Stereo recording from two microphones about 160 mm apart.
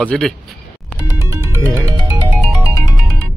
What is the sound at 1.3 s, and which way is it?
Music, 20° right (ahead or behind).